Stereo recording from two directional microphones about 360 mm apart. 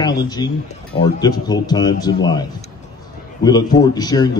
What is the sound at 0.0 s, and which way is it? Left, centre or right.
A man's voice, centre.